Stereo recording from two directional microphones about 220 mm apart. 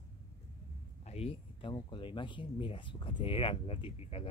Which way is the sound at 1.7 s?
20° left (ahead or behind).